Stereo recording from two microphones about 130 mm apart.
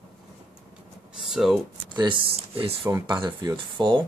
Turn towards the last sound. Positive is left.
turn(degrees=-35)  # may be behind; listen again after turning